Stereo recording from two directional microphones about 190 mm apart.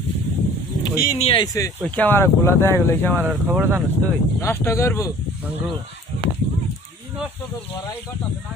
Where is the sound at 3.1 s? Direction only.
10° right (ahead or behind).